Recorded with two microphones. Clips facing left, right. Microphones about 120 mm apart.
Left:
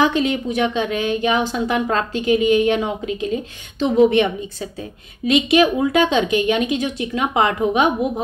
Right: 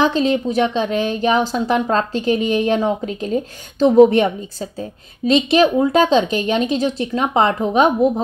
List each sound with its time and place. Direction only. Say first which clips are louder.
0.0 s speech: right 2 dB; 30° right (ahead or behind)